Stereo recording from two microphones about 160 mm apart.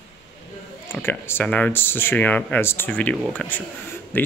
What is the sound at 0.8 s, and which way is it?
Speech, 15° left (ahead or behind).